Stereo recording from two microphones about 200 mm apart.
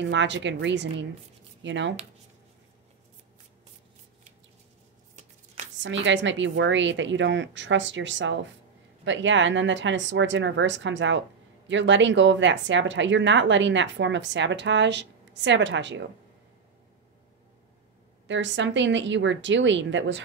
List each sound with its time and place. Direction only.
0.1 s speech: 65° right (ahead or behind)
5.8 s speech: 65° right (ahead or behind)
18.2 s speech: 65° right (ahead or behind)